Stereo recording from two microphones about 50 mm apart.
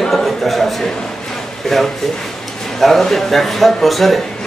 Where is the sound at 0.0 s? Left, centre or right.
Centre.